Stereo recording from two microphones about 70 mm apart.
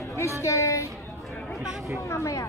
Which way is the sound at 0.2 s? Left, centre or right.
Left.